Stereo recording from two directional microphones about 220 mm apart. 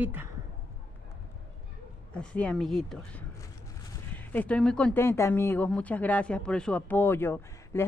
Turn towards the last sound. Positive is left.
turn(degrees=10)  # may be behind; listen again after turning